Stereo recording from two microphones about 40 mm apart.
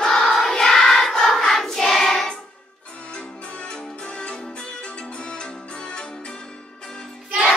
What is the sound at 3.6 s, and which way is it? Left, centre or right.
Music, left.